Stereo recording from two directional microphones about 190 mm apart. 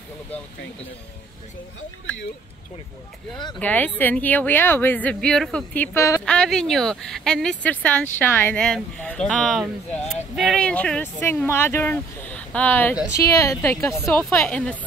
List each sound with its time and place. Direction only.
3.5 s speech: 10° left (ahead or behind)
6.2 s speech: 5° left (ahead or behind)